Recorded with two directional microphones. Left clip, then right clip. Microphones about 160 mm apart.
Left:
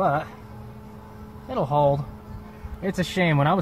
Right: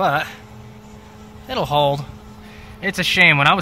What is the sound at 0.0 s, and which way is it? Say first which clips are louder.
Speech: right 4 dB; 5° right (ahead or behind).